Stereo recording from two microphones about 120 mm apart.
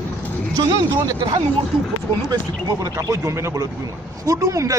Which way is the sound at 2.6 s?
30° right (ahead or behind).